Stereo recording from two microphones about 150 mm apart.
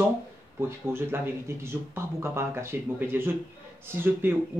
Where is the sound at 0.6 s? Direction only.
15° right (ahead or behind).